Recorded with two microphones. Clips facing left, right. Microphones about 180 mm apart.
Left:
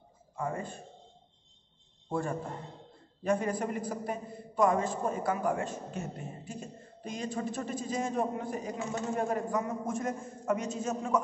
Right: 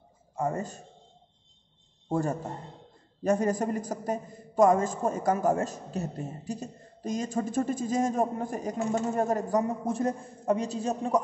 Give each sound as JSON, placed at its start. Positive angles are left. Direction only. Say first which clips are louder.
{"t": 0.4, "sound": "a man's voice", "louder": "right 5 dB", "side_deg": -40}
{"t": 2.0, "sound": "a man's voice", "louder": "right 4 dB", "side_deg": -40}